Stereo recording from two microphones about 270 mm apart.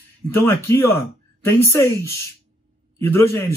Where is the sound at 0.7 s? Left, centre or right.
Centre.